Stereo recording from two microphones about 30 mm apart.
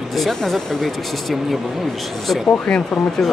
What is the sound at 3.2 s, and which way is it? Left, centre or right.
Speech, centre.